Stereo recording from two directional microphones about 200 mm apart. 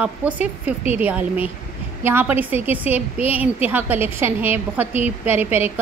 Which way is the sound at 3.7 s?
10° right (ahead or behind).